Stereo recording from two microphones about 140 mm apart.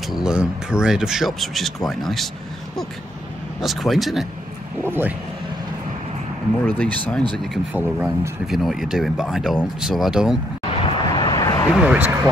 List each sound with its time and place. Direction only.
0.1 s speech: 5° right (ahead or behind)
3.6 s speech: centre (ahead or behind)
4.8 s speech: 15° right (ahead or behind)
6.6 s speech: 10° left (ahead or behind)
7.7 s speech: 10° right (ahead or behind)
10.8 s vehicle: 35° left (ahead or behind)
11.7 s speech: 10° right (ahead or behind)